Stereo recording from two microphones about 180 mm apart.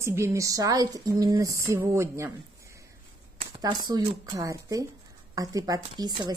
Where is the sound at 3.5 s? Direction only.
25° right (ahead or behind).